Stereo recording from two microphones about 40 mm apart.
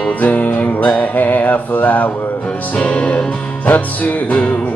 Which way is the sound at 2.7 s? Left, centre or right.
Left.